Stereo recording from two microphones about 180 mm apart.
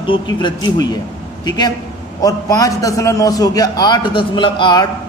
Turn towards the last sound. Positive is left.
turn(degrees=25)  # may be behind; listen again after turning